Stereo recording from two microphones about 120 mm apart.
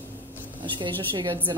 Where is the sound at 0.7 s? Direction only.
40° right (ahead or behind).